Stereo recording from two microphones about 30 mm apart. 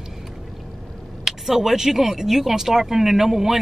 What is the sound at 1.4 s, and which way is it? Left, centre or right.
Speech, centre.